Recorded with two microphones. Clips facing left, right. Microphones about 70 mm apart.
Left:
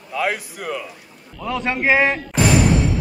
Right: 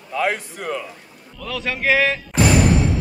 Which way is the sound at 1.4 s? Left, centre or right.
Left.